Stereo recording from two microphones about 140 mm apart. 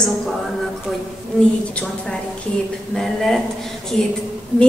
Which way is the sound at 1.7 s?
5° left (ahead or behind).